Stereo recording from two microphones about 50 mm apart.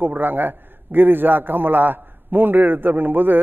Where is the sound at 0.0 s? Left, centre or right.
Right.